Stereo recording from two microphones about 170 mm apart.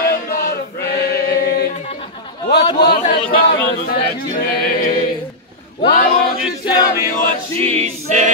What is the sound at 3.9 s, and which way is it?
Speech, 60° left (ahead or behind).